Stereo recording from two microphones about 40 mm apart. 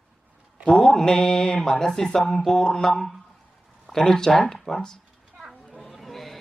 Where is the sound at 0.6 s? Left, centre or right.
Left; by 4.8 s centre.